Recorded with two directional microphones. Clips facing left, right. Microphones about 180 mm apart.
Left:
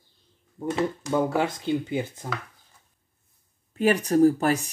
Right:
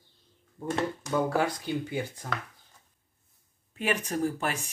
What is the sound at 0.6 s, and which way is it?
Speech, 20° left (ahead or behind).